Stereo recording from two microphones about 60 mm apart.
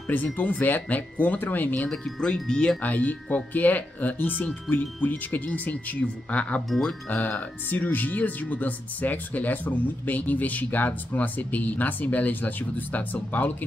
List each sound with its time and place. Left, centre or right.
0.1 s speech: left
2.0 s chime: centre
2.8 s speech: left